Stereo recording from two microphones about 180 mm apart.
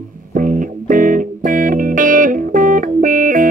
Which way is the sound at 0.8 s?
50° right (ahead or behind).